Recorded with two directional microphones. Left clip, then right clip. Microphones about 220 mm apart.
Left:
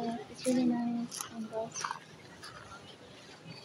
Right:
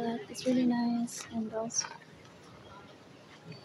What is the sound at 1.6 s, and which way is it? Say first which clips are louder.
Speech: right 1 dB; 10° right (ahead or behind).